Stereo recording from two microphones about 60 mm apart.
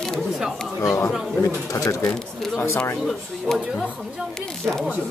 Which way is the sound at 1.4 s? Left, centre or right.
Left.